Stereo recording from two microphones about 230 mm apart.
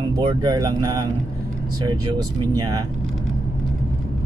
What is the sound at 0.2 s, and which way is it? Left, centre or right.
Speech, centre.